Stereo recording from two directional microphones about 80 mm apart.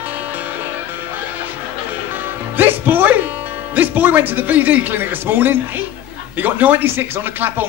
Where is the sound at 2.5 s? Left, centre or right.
Right.